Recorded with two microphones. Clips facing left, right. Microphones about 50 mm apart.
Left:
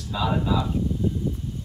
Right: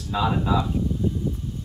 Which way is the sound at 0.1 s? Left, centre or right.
Right.